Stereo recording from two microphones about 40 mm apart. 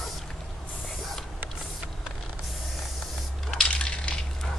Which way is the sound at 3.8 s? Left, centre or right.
Left.